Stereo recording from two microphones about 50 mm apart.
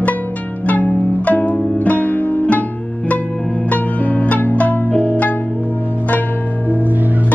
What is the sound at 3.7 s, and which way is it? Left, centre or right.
Music, left.